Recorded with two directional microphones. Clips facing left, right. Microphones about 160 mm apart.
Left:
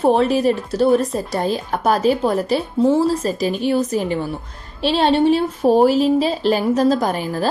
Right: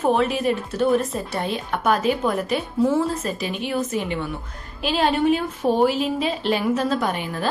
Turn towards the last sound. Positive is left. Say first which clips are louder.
# left 4 dB
turn(degrees=35)  # may be behind; listen again after turning